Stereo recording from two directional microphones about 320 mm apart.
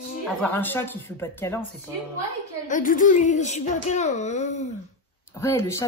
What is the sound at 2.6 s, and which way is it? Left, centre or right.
Speech, left.